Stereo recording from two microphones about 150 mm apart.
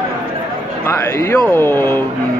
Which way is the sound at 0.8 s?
20° left (ahead or behind).